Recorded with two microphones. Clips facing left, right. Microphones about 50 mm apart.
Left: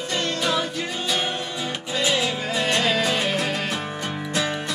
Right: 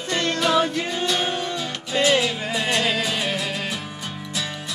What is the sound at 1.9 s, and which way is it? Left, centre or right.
Music, right.